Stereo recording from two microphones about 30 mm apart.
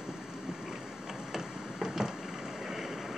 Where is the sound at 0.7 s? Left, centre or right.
Centre.